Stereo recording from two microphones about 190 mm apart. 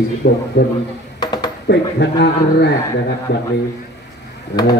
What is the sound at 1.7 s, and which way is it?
A man's voice, 65° left (ahead or behind).